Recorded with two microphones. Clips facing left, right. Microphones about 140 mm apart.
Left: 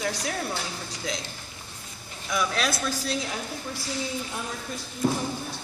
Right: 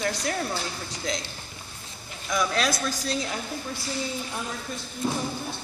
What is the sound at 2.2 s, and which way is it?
Speech, centre (ahead or behind).